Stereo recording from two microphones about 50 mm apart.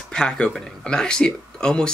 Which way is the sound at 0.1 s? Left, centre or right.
Centre.